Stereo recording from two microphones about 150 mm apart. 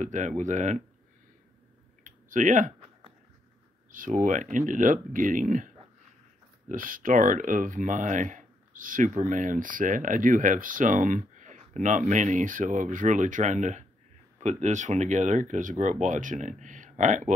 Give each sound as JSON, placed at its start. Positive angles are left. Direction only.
{"t": 0.0, "sound": "speech", "side_deg": -55}
{"t": 2.0, "sound": "clicking", "side_deg": -60}
{"t": 3.9, "sound": "speech", "side_deg": -60}
{"t": 6.7, "sound": "speech", "side_deg": -65}